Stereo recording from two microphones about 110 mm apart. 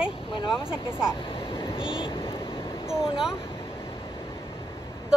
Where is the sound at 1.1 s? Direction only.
55° left (ahead or behind).